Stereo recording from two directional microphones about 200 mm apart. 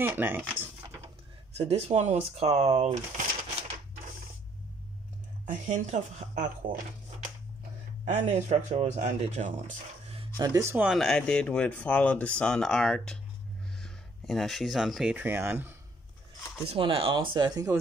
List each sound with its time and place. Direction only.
0.0 s speech: 10° right (ahead or behind)
1.7 s speech: 30° right (ahead or behind)
5.7 s speech: 35° right (ahead or behind)
10.3 s speech: 20° right (ahead or behind)
16.6 s speech: 25° right (ahead or behind)